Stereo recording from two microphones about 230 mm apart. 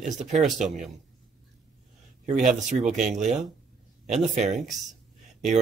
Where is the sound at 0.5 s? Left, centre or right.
Centre.